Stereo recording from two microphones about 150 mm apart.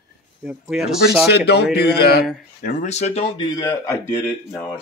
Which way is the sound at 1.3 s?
90° left.